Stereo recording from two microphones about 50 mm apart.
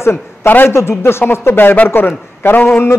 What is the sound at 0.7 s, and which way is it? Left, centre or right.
Speech, left.